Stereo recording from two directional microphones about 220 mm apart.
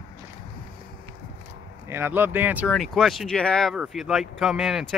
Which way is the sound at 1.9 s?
10° right (ahead or behind).